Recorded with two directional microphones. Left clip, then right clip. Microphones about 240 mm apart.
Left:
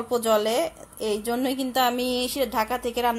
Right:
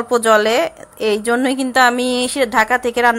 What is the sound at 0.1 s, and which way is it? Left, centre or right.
A woman's voice, right.